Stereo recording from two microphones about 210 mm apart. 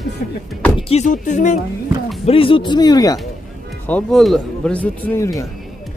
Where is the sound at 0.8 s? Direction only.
30° left (ahead or behind).